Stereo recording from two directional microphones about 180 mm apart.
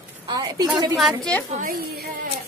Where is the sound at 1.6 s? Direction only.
55° right (ahead or behind).